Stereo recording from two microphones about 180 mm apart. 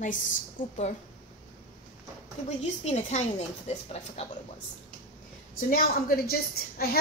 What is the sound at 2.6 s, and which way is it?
A woman's voice, 40° left (ahead or behind).